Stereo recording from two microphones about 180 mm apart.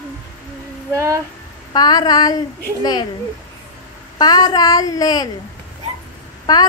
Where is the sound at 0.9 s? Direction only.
15° right (ahead or behind).